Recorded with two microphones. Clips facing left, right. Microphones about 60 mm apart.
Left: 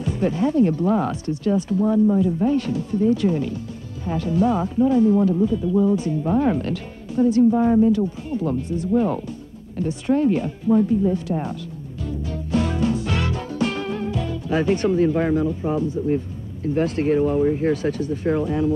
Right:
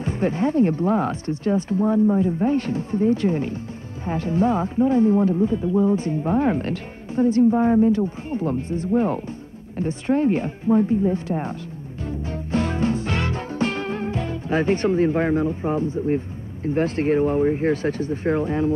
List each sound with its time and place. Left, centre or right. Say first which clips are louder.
0.0 s speech: left 1 dB; right
12.1 s music: left 1 dB; right
16.6 s speech: even; right